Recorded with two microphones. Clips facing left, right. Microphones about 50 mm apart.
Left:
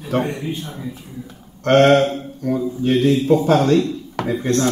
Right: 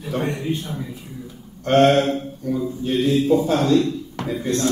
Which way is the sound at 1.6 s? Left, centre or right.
Left.